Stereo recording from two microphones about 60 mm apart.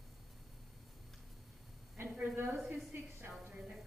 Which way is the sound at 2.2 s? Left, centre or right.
Right.